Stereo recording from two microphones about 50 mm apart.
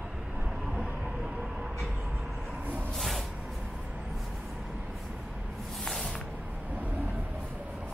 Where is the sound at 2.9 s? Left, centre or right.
Centre.